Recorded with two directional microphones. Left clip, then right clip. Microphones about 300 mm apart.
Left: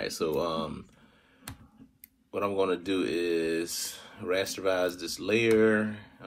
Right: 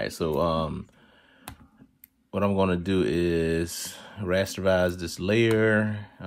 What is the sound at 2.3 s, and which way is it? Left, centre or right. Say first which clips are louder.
Speech: right 3 dB; right.